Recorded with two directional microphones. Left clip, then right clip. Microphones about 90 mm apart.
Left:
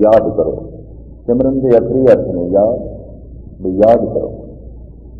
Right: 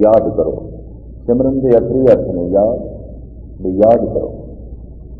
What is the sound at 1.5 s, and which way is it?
A man's voice, 20° right (ahead or behind).